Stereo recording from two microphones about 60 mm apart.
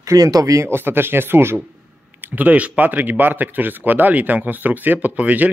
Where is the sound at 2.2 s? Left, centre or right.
Right.